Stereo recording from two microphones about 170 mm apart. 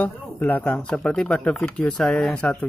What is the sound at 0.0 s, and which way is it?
Speech, 10° left (ahead or behind).